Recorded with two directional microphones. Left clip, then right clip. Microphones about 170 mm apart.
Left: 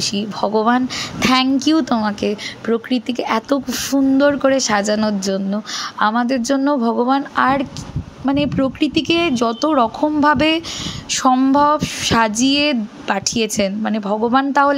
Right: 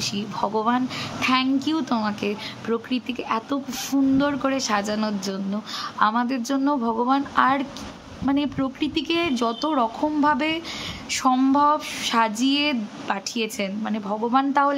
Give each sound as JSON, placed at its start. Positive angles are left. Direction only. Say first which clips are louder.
{"t": 0.0, "sound": "speech", "louder": "left 6 dB", "side_deg": 30}